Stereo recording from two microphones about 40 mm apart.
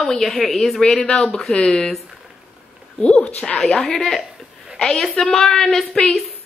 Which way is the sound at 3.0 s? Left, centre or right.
Left.